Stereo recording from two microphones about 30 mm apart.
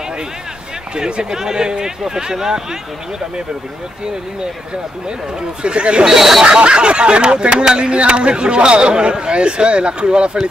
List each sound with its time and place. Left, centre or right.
0.9 s speech: right
5.6 s speech: right
6.0 s speech: centre
6.4 s speech: right